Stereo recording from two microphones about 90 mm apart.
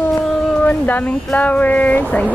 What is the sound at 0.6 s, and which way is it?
Speech, 20° left (ahead or behind).